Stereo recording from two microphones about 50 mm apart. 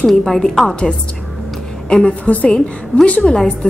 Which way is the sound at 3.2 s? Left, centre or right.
Centre.